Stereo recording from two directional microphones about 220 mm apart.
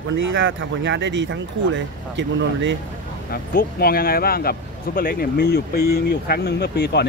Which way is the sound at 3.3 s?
45° left (ahead or behind).